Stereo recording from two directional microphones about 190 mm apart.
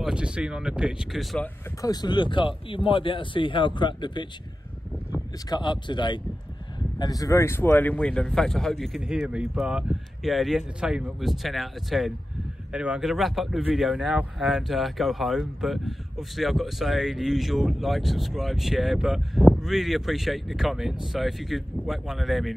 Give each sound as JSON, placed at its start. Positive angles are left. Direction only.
{"t": 0.0, "sound": "speech", "side_deg": -5}
{"t": 1.8, "sound": "speech", "side_deg": 20}
{"t": 5.5, "sound": "speech", "side_deg": 25}